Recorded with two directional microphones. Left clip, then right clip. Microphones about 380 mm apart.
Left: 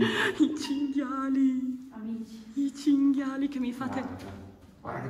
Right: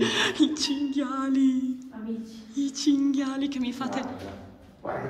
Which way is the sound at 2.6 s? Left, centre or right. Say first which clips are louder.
Right 1 dB; centre.